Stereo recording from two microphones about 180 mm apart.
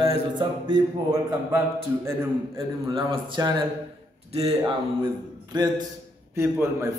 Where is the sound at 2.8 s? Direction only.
25° right (ahead or behind).